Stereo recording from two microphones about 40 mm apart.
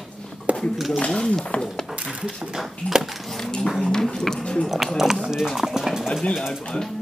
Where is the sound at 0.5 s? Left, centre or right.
Right.